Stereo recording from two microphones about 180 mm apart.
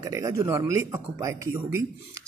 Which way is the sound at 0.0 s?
15° right (ahead or behind).